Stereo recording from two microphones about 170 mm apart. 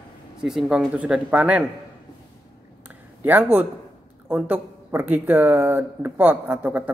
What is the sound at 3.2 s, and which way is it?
Speech, 10° right (ahead or behind).